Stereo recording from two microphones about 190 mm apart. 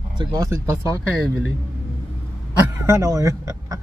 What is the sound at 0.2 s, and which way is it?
Speech, 20° right (ahead or behind).